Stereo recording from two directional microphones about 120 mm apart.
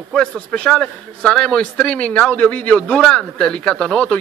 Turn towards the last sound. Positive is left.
turn(degrees=5)  # may be behind; listen again after turning